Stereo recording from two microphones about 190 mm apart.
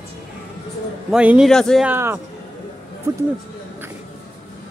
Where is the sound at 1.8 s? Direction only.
10° right (ahead or behind).